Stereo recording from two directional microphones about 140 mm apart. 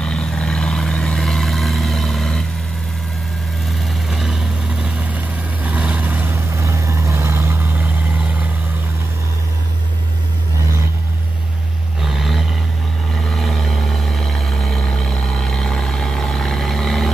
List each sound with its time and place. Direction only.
0.0 s vehicle: 5° left (ahead or behind)
3.8 s vehicle: centre (ahead or behind)
12.0 s vehicle: centre (ahead or behind)